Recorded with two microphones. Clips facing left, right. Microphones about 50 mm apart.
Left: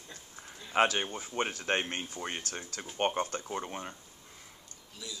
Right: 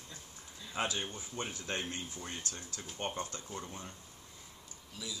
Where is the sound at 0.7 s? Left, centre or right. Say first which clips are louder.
Left 9 dB; left.